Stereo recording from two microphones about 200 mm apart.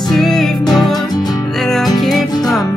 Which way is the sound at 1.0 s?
20° left (ahead or behind).